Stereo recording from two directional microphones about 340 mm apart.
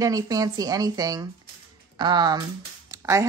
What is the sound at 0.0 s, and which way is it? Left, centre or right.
Speech, centre.